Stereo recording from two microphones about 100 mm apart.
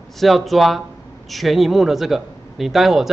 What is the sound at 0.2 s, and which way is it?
Speech, centre (ahead or behind).